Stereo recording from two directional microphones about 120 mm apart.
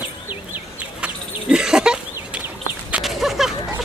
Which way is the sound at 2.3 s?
10° right (ahead or behind).